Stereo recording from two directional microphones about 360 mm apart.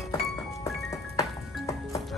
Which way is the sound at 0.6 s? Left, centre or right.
Centre.